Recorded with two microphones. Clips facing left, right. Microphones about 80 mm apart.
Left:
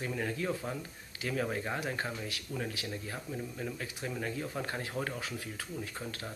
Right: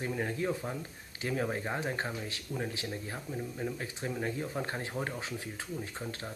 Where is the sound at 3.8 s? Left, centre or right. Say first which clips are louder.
Right 2 dB; right.